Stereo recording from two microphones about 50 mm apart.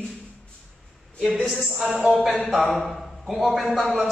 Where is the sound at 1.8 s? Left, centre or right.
Centre.